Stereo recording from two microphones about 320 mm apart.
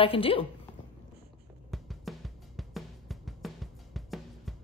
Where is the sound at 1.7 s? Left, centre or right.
Centre.